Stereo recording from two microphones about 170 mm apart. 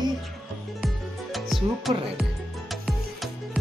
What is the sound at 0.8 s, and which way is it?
Music, centre (ahead or behind).